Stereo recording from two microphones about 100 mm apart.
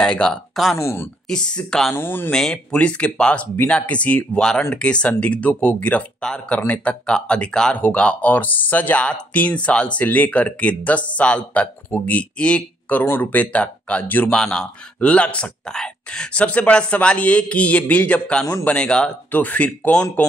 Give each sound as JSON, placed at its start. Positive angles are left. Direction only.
{"t": 0.0, "sound": "speech", "side_deg": 10}
{"t": 0.7, "sound": "speech", "side_deg": 25}
{"t": 1.3, "sound": "speech", "side_deg": 10}
{"t": 2.0, "sound": "speech", "side_deg": 20}
{"t": 2.3, "sound": "speech", "side_deg": 5}
{"t": 14.3, "sound": "speech", "side_deg": 5}